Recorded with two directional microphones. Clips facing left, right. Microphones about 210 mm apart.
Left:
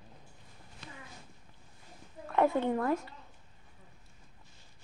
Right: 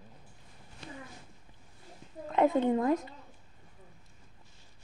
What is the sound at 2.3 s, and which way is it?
Speech, 20° right (ahead or behind).